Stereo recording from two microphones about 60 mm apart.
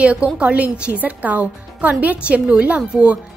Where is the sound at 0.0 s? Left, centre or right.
Centre.